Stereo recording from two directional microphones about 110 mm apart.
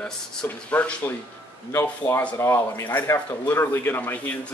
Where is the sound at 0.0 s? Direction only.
10° left (ahead or behind).